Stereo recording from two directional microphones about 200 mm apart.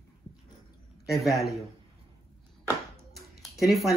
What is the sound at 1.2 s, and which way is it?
Speech, centre (ahead or behind).